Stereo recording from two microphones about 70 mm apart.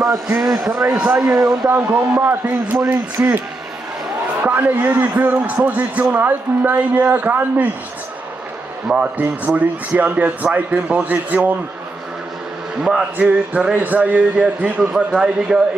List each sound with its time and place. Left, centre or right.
0.4 s a man's voice: centre
0.9 s speech: centre
1.3 s speech: right
2.2 s speech: right
4.4 s speech: right
8.8 s speech: centre
12.8 s speech: centre